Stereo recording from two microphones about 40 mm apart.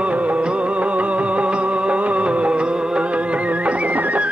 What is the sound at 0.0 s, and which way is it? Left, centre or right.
Music, right.